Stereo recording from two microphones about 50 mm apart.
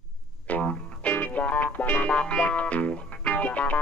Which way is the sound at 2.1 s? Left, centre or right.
Left.